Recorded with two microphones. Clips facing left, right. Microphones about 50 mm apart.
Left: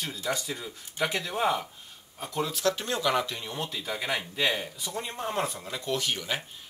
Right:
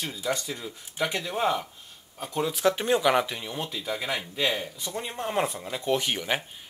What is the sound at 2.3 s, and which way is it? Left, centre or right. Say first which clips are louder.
Speech: right 3 dB; centre.